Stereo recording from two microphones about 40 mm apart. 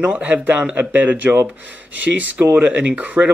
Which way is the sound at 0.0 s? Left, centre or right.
Right.